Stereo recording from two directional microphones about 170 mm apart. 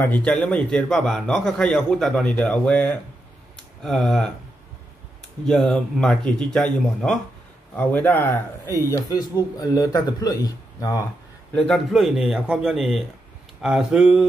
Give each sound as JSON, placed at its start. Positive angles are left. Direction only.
{"t": 0.0, "sound": "a man's voice", "side_deg": 10}
{"t": 5.5, "sound": "a man's voice", "side_deg": 5}
{"t": 11.5, "sound": "a man's voice", "side_deg": 5}